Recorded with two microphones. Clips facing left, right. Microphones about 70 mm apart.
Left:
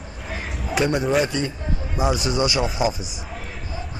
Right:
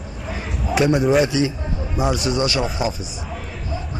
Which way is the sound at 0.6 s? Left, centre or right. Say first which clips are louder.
Right 4 dB; centre.